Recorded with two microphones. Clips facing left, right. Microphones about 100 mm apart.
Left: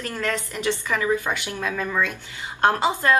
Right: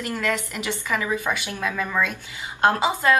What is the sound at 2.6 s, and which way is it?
Speech, 15° right (ahead or behind).